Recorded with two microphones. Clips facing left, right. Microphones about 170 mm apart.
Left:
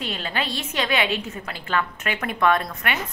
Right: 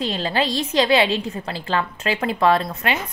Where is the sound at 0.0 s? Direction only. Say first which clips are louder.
Right 6 dB; 35° right (ahead or behind).